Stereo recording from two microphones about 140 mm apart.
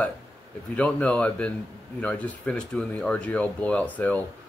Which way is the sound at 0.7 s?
10° left (ahead or behind).